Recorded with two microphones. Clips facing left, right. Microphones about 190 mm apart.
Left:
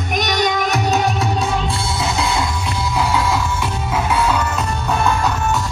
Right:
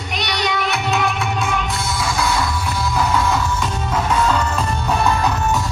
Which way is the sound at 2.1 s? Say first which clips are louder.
Right 1 dB; 20° left (ahead or behind).